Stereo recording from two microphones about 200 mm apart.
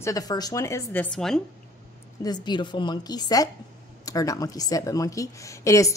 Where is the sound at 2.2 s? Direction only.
20° left (ahead or behind).